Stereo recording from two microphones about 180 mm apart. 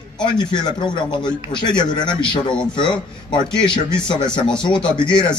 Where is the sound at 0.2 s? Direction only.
25° left (ahead or behind).